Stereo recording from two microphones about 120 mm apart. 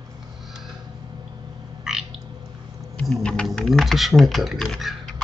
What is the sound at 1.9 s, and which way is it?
Frog, 5° right (ahead or behind).